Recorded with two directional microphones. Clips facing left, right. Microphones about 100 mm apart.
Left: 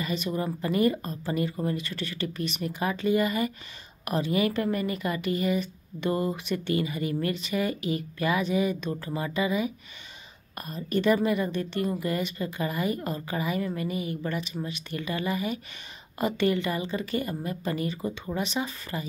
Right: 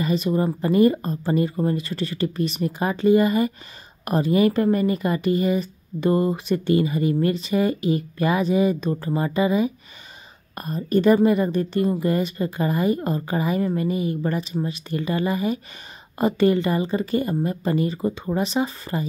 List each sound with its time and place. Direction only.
0.0 s speech: 35° right (ahead or behind)